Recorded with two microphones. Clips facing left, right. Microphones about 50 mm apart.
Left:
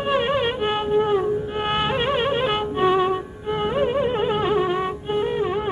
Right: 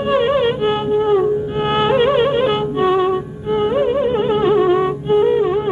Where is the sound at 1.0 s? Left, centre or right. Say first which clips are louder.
Right 6 dB; centre.